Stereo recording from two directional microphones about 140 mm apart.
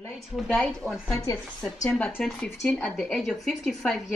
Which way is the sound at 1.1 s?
20° left (ahead or behind).